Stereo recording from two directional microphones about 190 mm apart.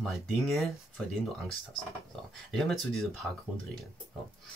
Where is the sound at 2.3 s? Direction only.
Centre (ahead or behind).